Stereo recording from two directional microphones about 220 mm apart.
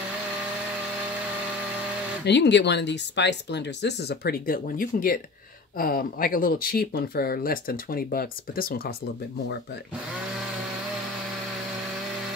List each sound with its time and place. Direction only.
2.2 s speech: 50° left (ahead or behind)